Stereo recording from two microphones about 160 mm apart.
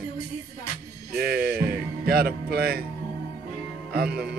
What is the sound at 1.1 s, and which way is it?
Music, 70° right (ahead or behind).